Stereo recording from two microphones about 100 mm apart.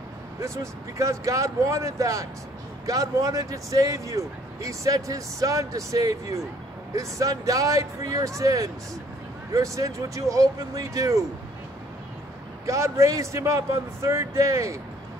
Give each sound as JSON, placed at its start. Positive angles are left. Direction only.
{"t": 0.4, "sound": "speech", "side_deg": -30}
{"t": 12.6, "sound": "speech", "side_deg": -30}